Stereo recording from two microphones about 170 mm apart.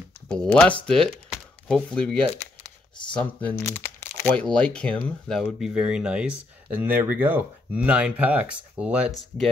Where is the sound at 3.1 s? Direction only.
10° left (ahead or behind).